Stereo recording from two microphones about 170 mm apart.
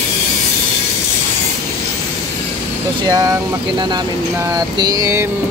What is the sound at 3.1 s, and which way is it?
Speech, 20° right (ahead or behind).